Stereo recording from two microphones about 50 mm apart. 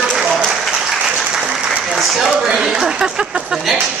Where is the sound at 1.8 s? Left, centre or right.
Centre.